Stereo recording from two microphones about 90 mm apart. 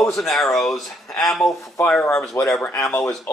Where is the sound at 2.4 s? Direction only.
30° left (ahead or behind).